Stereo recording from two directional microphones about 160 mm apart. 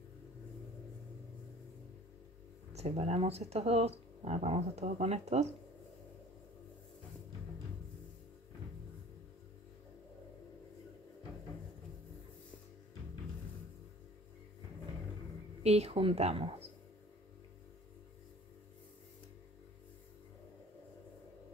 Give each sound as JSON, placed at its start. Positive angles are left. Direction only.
{"t": 2.7, "sound": "speech", "side_deg": -40}
{"t": 15.6, "sound": "speech", "side_deg": -40}